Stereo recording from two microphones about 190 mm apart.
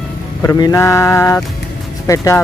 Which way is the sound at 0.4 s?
15° left (ahead or behind).